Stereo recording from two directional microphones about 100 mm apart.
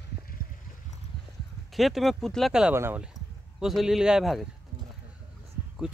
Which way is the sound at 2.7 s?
25° right (ahead or behind).